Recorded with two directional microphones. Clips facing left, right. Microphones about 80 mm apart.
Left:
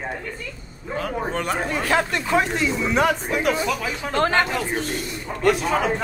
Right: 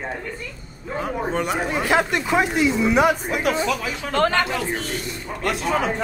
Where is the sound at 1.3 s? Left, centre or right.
Centre.